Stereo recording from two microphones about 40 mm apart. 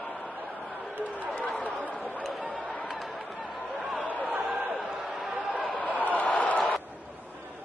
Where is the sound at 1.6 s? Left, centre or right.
Left.